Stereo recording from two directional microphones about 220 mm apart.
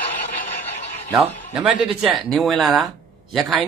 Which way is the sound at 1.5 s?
5° right (ahead or behind).